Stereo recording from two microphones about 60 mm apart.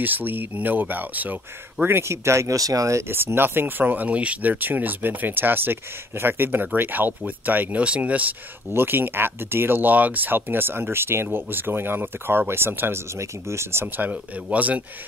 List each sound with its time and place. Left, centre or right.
0.0 s speech: right
2.5 s speech: right
3.0 s speech: right
8.7 s speech: right
14.0 s speech: right